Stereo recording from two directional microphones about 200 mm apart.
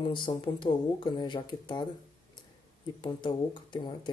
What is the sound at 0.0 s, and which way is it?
Speech, 25° left (ahead or behind).